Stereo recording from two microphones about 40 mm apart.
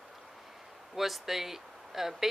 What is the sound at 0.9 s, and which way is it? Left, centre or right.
Speech, centre.